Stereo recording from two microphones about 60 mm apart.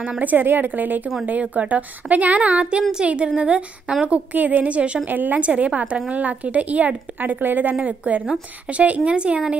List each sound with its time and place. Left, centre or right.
0.2 s a woman's voice: right